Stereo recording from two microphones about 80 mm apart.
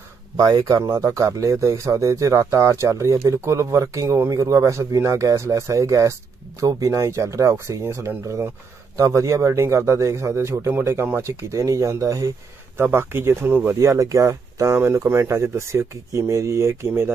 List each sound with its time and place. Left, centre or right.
0.4 s speech: right
12.7 s speech: right
13.7 s speech: right